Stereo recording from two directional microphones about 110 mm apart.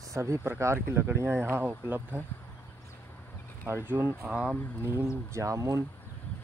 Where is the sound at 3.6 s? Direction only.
20° right (ahead or behind).